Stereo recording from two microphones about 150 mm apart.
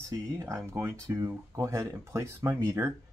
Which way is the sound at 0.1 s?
20° right (ahead or behind).